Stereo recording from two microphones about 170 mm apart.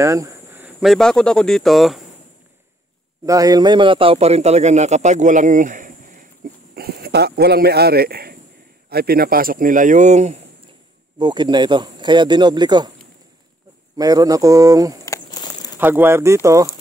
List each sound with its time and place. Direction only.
0.0 s a sound: 20° right (ahead or behind)
0.8 s speech: 5° left (ahead or behind)
3.3 s a man's voice: 20° right (ahead or behind); by 6.2 s 50° right (ahead or behind)
6.7 s a man's voice: 65° right (ahead or behind); by 10.4 s 40° right (ahead or behind)
11.1 s speech: 25° right (ahead or behind)
13.9 s speech: 20° right (ahead or behind)
15.0 s a sound: 20° left (ahead or behind)
15.8 s speech: 10° right (ahead or behind)